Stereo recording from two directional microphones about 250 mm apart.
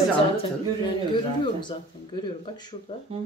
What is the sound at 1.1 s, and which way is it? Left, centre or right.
Speech, centre.